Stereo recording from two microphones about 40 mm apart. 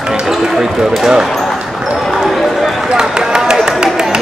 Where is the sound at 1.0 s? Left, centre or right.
Centre.